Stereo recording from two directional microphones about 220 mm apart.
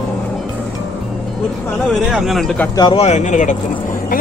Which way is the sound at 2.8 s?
25° left (ahead or behind).